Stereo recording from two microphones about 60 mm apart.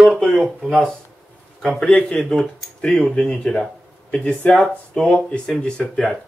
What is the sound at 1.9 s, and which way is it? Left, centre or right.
Speech, centre.